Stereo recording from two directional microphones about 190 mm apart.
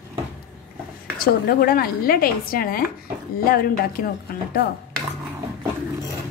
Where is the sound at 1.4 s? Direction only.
50° left (ahead or behind).